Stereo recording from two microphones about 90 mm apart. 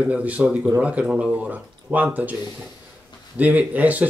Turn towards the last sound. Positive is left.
turn(degrees=-15)  # may be behind; listen again after turning